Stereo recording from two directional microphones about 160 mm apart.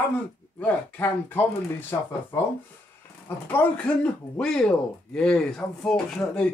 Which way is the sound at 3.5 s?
5° left (ahead or behind).